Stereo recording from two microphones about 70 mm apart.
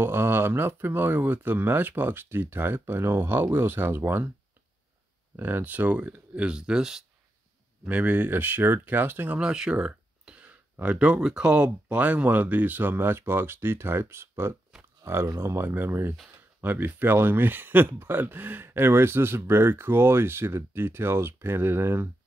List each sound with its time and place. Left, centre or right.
0.0 s speech: right
5.3 s speech: right; by 7.1 s centre
7.8 s speech: right
9.4 s speech: centre; by 22.1 s right